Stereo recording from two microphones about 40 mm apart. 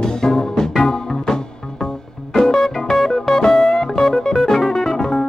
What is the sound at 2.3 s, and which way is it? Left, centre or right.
Music, centre.